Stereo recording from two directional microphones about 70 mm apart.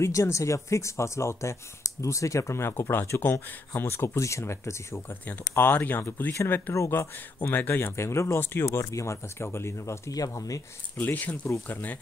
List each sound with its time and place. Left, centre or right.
0.0 s speech: left
10.3 s speech: left
11.0 s speech: left
11.4 s speech: left
11.7 s speech: left